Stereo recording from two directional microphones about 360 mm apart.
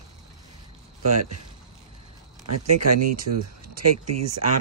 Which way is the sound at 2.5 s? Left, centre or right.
Right.